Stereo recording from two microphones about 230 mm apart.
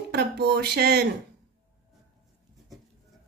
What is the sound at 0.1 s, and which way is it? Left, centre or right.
Speech, right.